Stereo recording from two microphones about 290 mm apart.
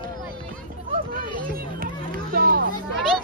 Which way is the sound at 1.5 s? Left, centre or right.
Right.